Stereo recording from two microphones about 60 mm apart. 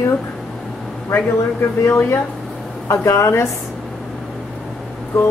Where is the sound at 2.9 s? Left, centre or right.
Left.